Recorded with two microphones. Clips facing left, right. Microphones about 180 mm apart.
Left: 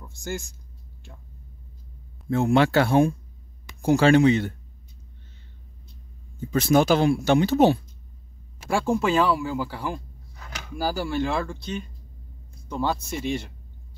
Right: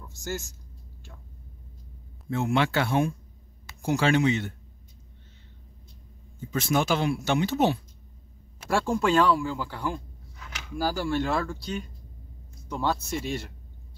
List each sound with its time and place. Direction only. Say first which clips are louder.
0.0 s speech: left 2 dB; 15° left (ahead or behind)
2.2 s speech: left 6 dB; 40° left (ahead or behind)
6.5 s speech: left 6 dB; 35° left (ahead or behind)
8.6 s speech: left 2 dB; centre (ahead or behind)
12.6 s speech: left 2 dB; centre (ahead or behind)